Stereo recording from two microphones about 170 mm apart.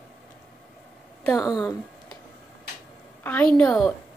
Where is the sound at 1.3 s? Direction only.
20° left (ahead or behind).